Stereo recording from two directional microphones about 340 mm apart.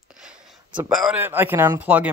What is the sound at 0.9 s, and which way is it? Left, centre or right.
Speech, centre.